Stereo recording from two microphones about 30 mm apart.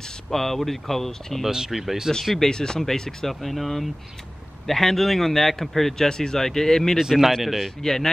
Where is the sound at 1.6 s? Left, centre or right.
Centre.